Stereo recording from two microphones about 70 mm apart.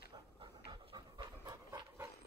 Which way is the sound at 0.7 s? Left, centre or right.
Right.